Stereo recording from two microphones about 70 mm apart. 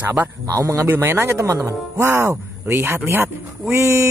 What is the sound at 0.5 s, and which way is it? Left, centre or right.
Speech, right.